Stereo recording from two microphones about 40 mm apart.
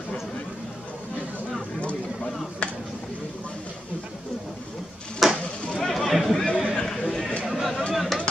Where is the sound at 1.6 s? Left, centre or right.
Left.